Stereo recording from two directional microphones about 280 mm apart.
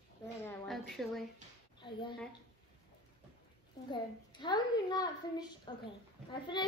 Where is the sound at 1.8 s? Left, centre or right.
Centre.